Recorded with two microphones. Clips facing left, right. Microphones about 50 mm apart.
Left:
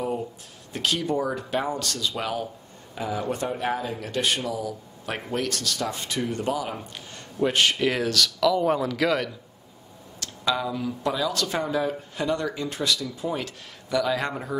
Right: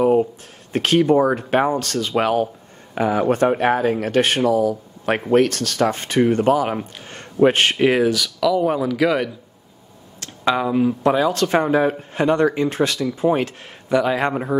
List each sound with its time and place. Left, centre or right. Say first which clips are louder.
0.0 s a sound: right 13 dB; right
0.7 s speech: right 10 dB; right
7.9 s speech: right 7 dB; centre
10.2 s speech: right 7 dB; right